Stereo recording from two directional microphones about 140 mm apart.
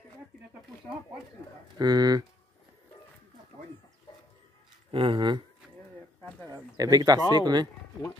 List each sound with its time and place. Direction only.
1.8 s speech: 30° right (ahead or behind)
4.9 s speech: 35° right (ahead or behind)
6.8 s speech: 25° right (ahead or behind)